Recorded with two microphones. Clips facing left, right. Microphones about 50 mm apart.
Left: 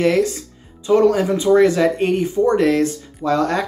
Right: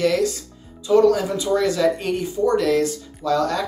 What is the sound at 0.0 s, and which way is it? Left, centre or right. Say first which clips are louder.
Speech: left 3 dB; left.